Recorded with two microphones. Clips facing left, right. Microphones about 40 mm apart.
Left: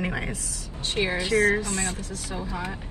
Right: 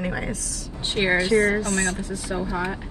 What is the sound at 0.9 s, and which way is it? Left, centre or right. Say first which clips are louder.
Speech: right 5 dB; right.